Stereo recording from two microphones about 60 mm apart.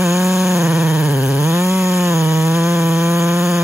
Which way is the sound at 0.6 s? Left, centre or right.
Centre.